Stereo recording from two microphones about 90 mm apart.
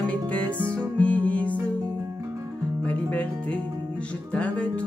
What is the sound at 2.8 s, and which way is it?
Music, 15° left (ahead or behind).